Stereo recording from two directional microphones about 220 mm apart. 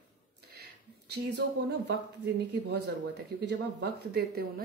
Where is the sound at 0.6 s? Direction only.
50° right (ahead or behind).